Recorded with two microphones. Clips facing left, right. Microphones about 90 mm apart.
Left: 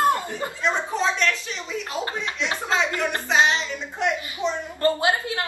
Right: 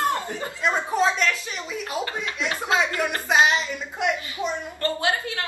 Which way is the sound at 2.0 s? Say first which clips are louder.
Even; 30° left (ahead or behind).